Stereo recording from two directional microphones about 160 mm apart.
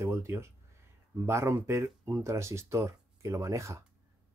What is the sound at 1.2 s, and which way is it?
Speech, 15° right (ahead or behind).